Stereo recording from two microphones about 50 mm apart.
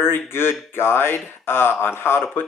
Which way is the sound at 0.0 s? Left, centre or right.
Left.